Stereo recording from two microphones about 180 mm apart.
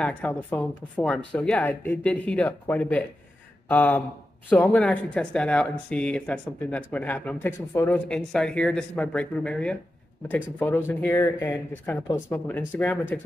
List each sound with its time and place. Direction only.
0.0 s speech: 10° left (ahead or behind)